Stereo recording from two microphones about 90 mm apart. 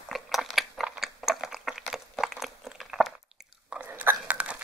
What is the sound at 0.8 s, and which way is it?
Chewing, 5° right (ahead or behind).